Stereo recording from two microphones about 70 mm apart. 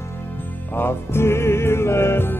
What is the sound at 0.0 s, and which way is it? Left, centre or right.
Music, left.